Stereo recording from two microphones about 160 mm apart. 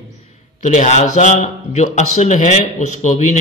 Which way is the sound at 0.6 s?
50° left (ahead or behind).